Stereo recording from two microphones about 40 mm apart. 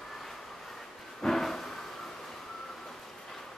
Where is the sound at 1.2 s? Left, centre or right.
Centre.